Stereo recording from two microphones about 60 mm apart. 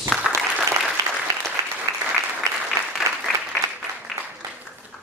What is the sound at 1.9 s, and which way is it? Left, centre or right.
Applause, right.